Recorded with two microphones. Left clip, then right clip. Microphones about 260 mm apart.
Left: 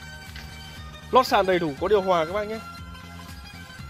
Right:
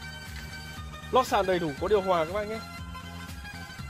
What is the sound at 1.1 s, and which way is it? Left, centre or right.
Speech, left.